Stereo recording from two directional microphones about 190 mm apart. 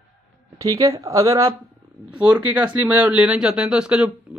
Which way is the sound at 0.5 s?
20° right (ahead or behind).